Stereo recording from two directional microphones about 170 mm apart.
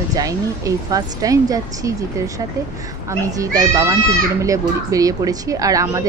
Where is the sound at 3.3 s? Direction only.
20° right (ahead or behind).